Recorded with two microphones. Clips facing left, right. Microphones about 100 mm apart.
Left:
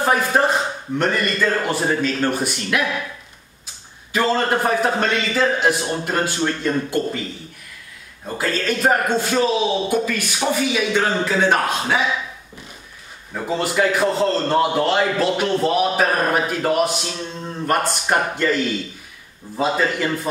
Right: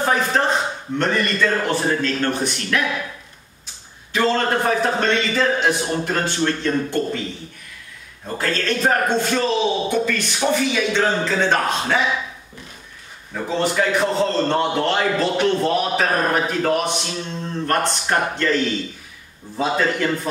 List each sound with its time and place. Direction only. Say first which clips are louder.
0.0 s a man's voice: left 1 dB; 10° left (ahead or behind)
4.1 s a man's voice: even; 5° left (ahead or behind)
8.4 s a man's voice: even; 5° left (ahead or behind)
13.3 s a man's voice: right 1 dB; 5° left (ahead or behind)